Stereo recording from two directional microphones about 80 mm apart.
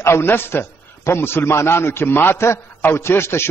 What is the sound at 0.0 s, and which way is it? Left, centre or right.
A man's voice, left.